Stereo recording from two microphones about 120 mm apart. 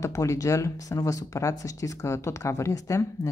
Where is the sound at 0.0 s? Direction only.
25° left (ahead or behind).